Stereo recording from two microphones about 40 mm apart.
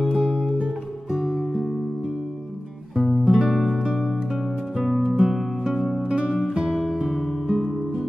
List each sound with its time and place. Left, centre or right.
0.0 s music: centre
3.0 s music: centre
4.7 s music: centre
6.4 s music: centre
6.7 s music: centre